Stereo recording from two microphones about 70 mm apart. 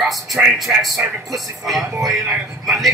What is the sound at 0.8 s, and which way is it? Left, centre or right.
A man's voice, centre.